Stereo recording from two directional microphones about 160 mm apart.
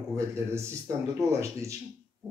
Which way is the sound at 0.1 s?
15° right (ahead or behind).